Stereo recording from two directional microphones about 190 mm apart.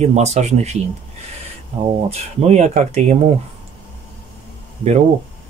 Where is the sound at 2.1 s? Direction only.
35° right (ahead or behind).